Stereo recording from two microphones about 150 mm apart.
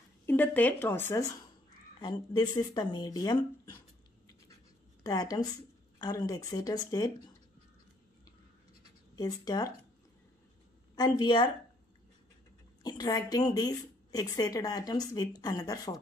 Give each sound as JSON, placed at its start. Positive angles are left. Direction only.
{"t": 0.3, "sound": "speech", "side_deg": 10}
{"t": 2.0, "sound": "a woman's voice", "side_deg": 30}
{"t": 5.0, "sound": "a woman's voice", "side_deg": 25}
{"t": 9.1, "sound": "a woman's voice", "side_deg": 25}
{"t": 11.0, "sound": "a woman's voice", "side_deg": 25}
{"t": 12.8, "sound": "a woman's voice", "side_deg": 25}